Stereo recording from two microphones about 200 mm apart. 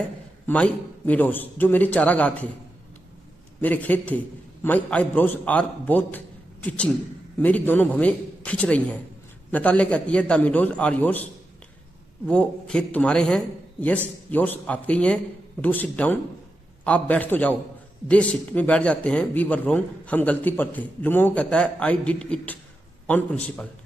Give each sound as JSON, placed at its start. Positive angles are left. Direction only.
{"t": 0.5, "sound": "speech", "side_deg": 5}
{"t": 3.6, "sound": "speech", "side_deg": 10}
{"t": 12.3, "sound": "speech", "side_deg": 5}